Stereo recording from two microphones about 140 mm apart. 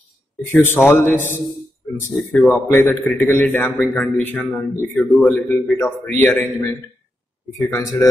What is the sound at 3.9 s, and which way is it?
A man's voice, centre (ahead or behind).